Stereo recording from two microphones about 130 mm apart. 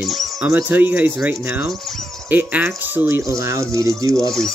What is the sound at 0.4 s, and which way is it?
Speech, 20° right (ahead or behind).